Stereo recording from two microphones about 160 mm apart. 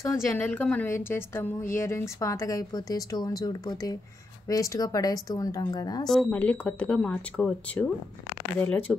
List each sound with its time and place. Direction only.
0.0 s a woman's voice: 15° left (ahead or behind)
6.0 s a woman's voice: 5° left (ahead or behind)